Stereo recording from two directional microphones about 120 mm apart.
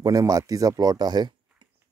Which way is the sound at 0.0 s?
30° right (ahead or behind).